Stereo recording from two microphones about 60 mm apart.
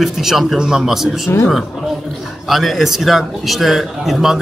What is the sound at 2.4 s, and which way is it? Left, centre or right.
A man's voice, centre.